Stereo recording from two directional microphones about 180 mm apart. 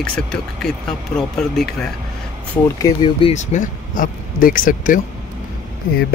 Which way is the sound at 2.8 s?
25° left (ahead or behind).